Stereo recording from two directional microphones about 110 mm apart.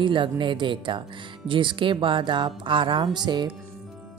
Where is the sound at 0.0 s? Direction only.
50° right (ahead or behind).